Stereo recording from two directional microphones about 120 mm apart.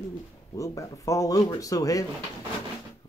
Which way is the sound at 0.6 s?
25° left (ahead or behind).